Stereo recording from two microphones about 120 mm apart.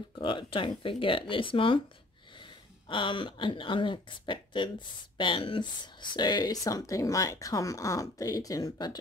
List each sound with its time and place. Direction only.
0.2 s speech: 45° left (ahead or behind)
2.9 s speech: 40° left (ahead or behind)